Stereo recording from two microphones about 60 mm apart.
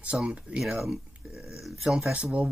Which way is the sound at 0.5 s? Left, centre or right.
Centre.